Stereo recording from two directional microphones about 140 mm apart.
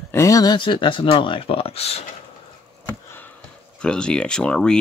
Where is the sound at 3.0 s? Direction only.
15° left (ahead or behind).